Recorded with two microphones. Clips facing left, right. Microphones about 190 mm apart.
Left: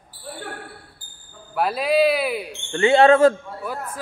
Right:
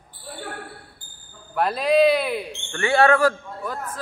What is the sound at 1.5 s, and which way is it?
Speech, 5° left (ahead or behind).